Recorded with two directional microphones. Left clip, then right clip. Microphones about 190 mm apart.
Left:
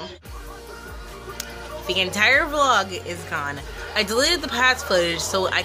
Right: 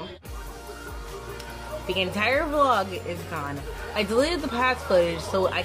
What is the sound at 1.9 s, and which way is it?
Speech, 5° right (ahead or behind).